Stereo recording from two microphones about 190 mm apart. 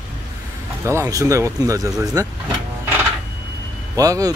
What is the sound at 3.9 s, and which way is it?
Speech, 20° right (ahead or behind).